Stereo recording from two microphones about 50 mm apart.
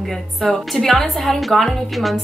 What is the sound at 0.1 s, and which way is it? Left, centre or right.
A woman's voice, centre.